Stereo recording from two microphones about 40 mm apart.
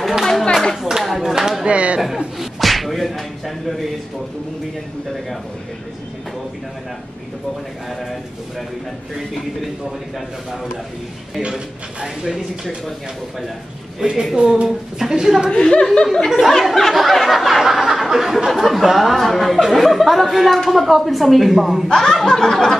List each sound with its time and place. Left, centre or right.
0.2 s a sound: centre
0.8 s speech: centre
1.7 s speech: right
2.1 s speech: centre
9.3 s speech: centre
11.4 s a woman's voice: centre
14.0 s a woman's voice: centre
15.5 s speech: left
16.3 s speech: centre
16.9 s a sound: centre
18.6 s speech: centre
21.8 s speech: centre